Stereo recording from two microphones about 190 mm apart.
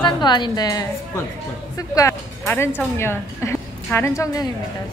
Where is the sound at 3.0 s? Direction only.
15° left (ahead or behind).